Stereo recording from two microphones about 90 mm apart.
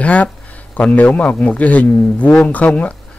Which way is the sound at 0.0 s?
15° left (ahead or behind).